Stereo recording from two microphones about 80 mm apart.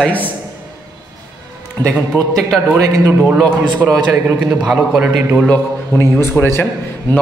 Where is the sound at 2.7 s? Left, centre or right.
Right.